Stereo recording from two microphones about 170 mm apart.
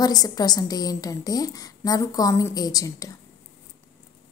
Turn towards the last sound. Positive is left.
turn(degrees=20)  # may be behind; listen again after turning